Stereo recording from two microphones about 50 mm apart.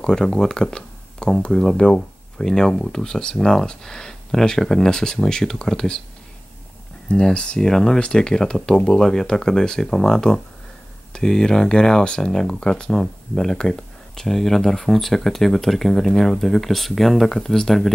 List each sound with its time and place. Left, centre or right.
0.0 s speech: centre
7.1 s speech: centre